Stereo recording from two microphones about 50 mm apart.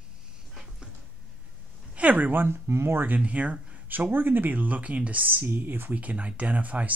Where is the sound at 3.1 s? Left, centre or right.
Right.